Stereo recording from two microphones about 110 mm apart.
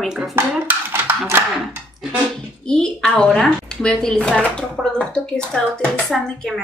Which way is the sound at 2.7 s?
5° left (ahead or behind).